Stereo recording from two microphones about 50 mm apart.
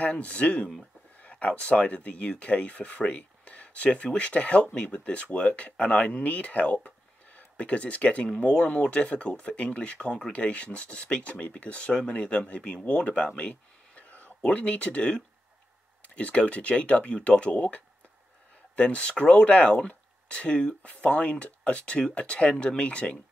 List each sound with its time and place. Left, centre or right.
0.0 s speech: left
13.4 s whispering: left
14.4 s speech: left